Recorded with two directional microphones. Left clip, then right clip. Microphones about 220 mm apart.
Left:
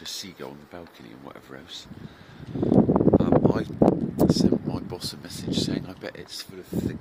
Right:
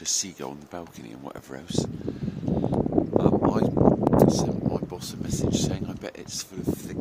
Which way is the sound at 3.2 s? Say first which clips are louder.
Even; 5° right (ahead or behind).